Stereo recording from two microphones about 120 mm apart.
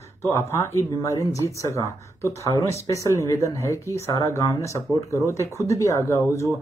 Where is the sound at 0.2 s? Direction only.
20° left (ahead or behind).